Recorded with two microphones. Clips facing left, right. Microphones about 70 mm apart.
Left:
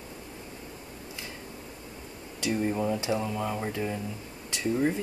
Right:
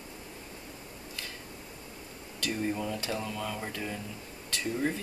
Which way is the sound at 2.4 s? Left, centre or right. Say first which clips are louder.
Left 5 dB; centre.